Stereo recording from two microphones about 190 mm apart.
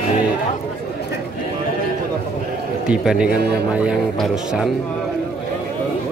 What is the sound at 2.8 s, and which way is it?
A man's voice, 5° right (ahead or behind).